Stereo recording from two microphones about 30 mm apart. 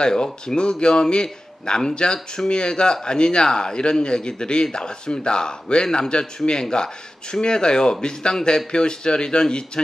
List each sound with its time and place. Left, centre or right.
0.0 s a man's voice: left